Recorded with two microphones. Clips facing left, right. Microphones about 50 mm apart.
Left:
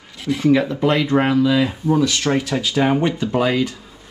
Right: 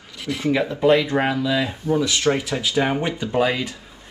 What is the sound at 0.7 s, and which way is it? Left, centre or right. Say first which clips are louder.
Speech: even; centre.